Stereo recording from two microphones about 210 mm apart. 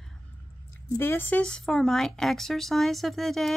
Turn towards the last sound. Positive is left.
turn(degrees=0)  # may be behind; listen again after turning